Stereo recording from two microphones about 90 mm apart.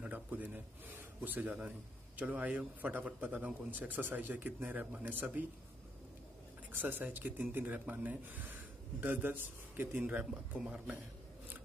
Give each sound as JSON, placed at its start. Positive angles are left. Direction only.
{"t": 0.0, "sound": "a sound", "side_deg": -15}
{"t": 1.2, "sound": "a man's voice", "side_deg": -20}
{"t": 6.7, "sound": "a man's voice", "side_deg": -20}
{"t": 10.1, "sound": "speech", "side_deg": -10}